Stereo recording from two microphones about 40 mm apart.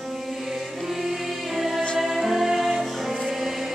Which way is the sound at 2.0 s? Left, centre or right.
Centre.